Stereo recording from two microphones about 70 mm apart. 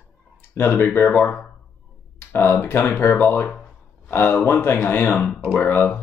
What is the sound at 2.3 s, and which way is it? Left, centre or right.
Speech, left.